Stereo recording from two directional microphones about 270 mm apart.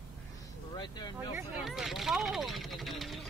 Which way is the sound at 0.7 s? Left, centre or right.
Centre.